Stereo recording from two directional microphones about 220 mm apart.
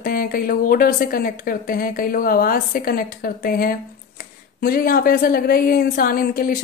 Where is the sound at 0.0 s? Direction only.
40° left (ahead or behind).